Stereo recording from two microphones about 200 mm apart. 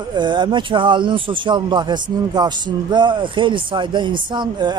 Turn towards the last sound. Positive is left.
turn(degrees=-20)  # may be behind; listen again after turning